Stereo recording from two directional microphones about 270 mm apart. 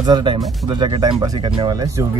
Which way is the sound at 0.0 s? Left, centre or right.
Centre.